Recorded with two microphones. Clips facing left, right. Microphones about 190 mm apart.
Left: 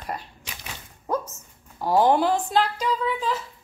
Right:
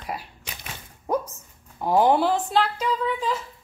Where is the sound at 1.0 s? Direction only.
15° right (ahead or behind).